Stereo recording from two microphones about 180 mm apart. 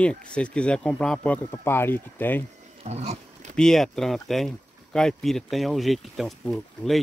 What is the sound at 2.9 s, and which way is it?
Roaring cats, 35° right (ahead or behind).